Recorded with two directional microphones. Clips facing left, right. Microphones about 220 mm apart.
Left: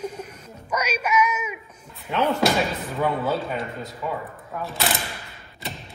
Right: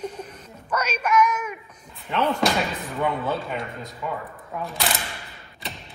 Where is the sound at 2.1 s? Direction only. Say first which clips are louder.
Left 1 dB; 5° left (ahead or behind).